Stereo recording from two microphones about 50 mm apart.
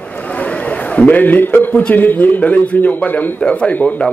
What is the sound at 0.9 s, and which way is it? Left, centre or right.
A man's voice, left.